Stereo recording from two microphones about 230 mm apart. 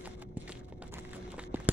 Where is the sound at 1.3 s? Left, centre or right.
Centre.